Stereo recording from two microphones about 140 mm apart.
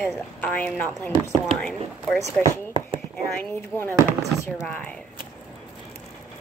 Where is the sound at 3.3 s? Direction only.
15° left (ahead or behind).